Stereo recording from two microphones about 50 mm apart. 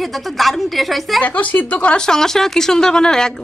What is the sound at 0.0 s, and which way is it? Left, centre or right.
Speech, centre.